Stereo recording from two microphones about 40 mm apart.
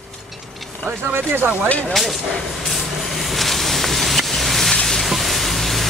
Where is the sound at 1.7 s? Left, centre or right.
Left.